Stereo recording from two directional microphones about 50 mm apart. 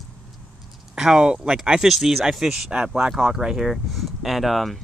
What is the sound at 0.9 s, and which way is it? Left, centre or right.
Speech, centre.